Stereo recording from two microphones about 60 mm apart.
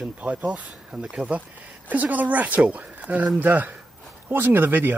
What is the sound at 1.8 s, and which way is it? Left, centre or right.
Speech, right.